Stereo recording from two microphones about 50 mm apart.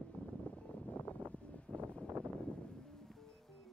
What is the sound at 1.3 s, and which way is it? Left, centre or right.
Vehicle, left.